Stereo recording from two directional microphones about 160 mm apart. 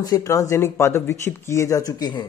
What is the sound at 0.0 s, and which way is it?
Speech, 20° left (ahead or behind).